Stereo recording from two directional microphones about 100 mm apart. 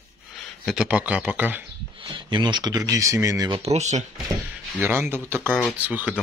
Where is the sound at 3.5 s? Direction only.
90° right.